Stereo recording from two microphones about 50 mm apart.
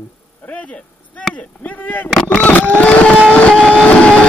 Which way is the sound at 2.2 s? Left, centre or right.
Left.